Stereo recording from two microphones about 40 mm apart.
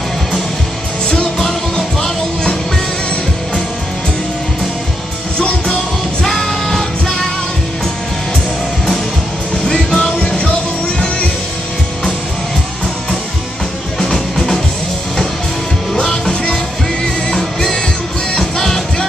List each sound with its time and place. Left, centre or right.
1.0 s music: left
1.4 s music: centre
5.4 s music: left
6.2 s music: centre
9.7 s music: left
13.9 s music: centre
15.9 s music: centre
18.3 s music: centre